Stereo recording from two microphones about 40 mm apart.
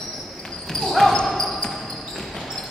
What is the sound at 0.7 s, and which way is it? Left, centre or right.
Basketball bounce, centre.